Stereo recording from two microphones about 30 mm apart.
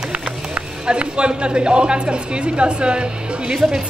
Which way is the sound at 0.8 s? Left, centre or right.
Right.